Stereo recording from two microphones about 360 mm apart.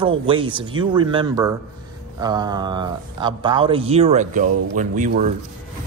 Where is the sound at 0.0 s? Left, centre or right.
Centre.